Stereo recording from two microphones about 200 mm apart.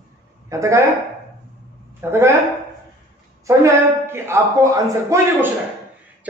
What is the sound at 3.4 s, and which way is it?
A man's voice, 15° right (ahead or behind).